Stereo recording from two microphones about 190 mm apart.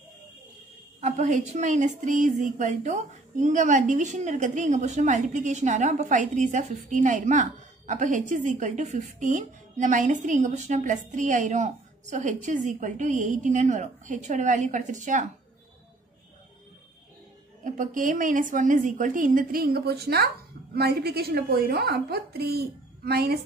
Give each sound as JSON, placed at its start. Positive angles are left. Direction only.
{"t": 1.0, "sound": "a woman's voice", "side_deg": -40}
{"t": 17.6, "sound": "a woman's voice", "side_deg": -45}